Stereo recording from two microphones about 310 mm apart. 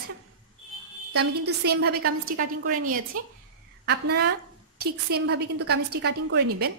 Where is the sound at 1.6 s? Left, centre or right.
Right.